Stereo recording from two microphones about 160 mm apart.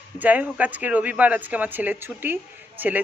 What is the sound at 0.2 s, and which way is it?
Speech, 10° right (ahead or behind).